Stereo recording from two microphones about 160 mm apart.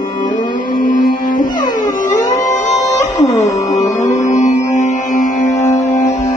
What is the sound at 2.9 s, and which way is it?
Music, 20° left (ahead or behind).